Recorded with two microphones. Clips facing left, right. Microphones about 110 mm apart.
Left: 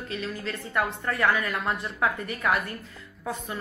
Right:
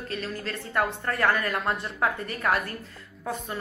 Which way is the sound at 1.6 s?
35° right (ahead or behind).